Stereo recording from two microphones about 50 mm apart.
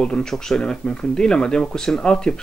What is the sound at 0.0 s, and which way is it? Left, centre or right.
Speech, centre.